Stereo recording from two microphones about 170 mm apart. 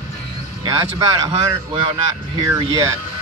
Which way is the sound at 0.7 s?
20° right (ahead or behind).